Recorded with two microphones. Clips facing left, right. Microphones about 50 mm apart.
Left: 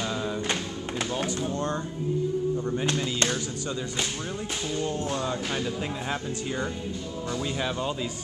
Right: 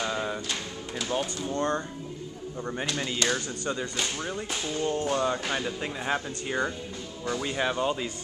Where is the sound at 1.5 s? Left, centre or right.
Centre.